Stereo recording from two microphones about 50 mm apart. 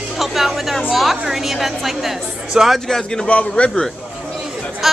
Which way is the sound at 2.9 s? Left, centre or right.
Centre.